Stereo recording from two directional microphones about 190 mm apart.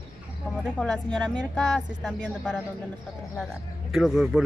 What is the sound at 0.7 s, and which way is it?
Speech, 5° left (ahead or behind).